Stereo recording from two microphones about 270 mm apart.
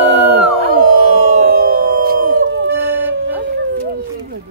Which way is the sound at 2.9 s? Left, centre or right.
Centre.